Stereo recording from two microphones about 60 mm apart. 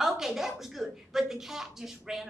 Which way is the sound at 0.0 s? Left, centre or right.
Centre.